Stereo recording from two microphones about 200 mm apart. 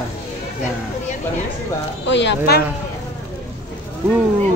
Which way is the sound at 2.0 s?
60° left (ahead or behind).